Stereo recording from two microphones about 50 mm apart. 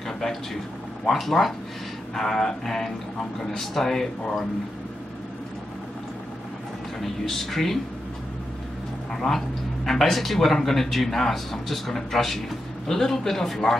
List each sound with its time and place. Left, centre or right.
1.0 s a man's voice: centre
7.0 s a man's voice: centre
9.1 s a man's voice: centre